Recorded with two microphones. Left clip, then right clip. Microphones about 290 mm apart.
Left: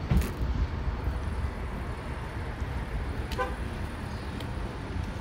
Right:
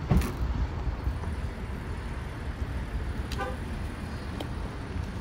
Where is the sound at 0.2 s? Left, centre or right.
Right.